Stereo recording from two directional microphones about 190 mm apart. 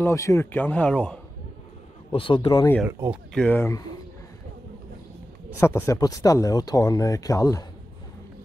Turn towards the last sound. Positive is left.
turn(degrees=15)  # may be behind; listen again after turning